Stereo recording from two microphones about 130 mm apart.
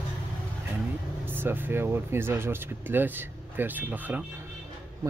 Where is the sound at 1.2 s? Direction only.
15° right (ahead or behind).